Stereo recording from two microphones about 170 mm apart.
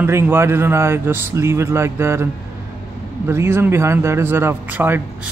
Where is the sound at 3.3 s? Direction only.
15° right (ahead or behind).